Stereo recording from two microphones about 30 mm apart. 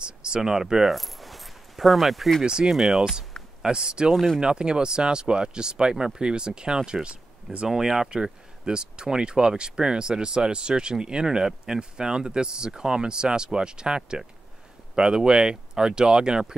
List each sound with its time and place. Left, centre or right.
0.0 s a sound: right
0.4 s speech: centre
0.8 s keys jangling: centre
2.4 s speech: right
7.6 s speech: centre
8.1 s speech: right